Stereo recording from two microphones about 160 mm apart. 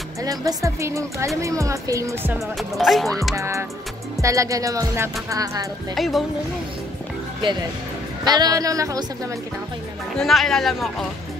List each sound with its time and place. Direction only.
0.2 s speech: 25° right (ahead or behind)
2.5 s speech: centre (ahead or behind)
3.3 s speech: 20° right (ahead or behind)
5.9 s speech: centre (ahead or behind)
8.2 s speech: 25° right (ahead or behind)
10.1 s speech: centre (ahead or behind)